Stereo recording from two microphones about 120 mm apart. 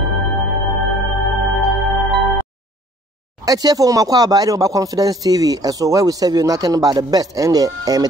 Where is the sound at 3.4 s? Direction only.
30° right (ahead or behind).